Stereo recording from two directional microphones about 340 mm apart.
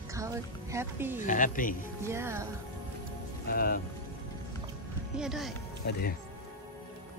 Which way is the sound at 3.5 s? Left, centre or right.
Left.